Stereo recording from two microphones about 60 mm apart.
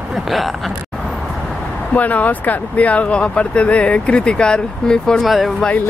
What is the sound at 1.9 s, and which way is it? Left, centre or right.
Speech, left.